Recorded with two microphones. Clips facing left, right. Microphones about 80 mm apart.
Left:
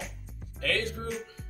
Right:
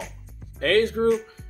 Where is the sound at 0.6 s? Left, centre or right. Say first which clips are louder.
Right 11 dB; right.